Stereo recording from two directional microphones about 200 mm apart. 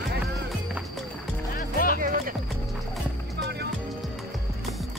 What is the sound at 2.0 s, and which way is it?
Music, 45° right (ahead or behind).